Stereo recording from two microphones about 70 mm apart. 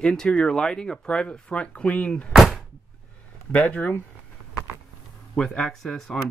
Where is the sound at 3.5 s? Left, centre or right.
Left.